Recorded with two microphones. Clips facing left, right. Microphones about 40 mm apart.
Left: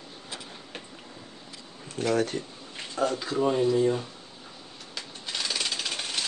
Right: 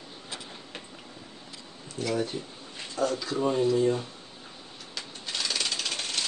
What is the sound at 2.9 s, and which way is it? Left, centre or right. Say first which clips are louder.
Speech: left 1 dB; left.